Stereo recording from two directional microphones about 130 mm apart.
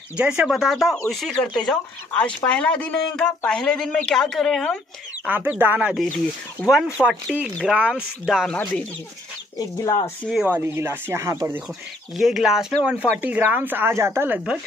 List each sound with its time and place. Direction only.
0.2 s speech: 10° right (ahead or behind)
5.2 s speech: 10° right (ahead or behind)
6.1 s speech: centre (ahead or behind)
9.6 s chicken: 30° left (ahead or behind)
10.4 s speech: 15° right (ahead or behind)
12.2 s speech: 5° right (ahead or behind)